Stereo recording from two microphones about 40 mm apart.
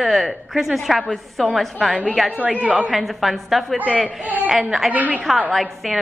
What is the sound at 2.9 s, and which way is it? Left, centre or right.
Speech, centre.